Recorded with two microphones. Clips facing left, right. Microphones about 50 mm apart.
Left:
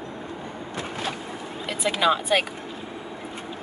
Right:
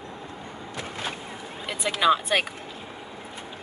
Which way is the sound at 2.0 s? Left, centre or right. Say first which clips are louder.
Even; centre.